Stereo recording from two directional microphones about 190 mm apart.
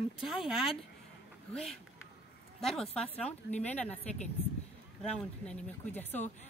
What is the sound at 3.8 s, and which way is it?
Speech, 35° left (ahead or behind).